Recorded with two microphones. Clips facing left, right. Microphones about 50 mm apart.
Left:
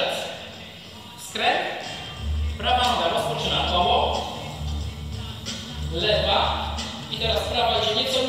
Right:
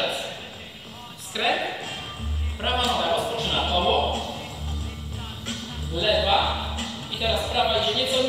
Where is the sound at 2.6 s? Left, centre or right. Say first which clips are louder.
Left 3 dB; centre.